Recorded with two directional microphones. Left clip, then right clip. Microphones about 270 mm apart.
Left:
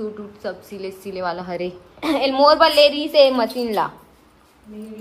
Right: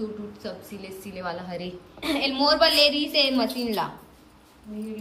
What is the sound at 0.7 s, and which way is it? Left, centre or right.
Speech, centre.